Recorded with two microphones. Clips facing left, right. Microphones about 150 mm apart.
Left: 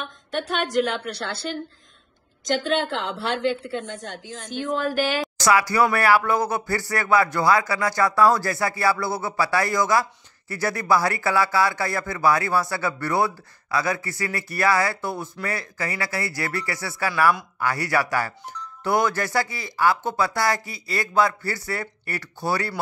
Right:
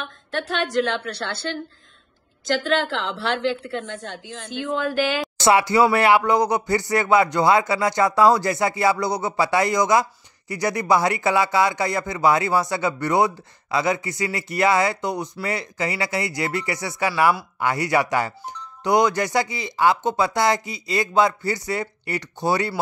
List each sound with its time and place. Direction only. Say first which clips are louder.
0.0 s a woman's voice: even; centre (ahead or behind)
2.6 s a woman's voice: right 1 dB; centre (ahead or behind)
4.7 s a woman's voice: right 1 dB; centre (ahead or behind)
5.4 s speech: right 3 dB; 25° right (ahead or behind)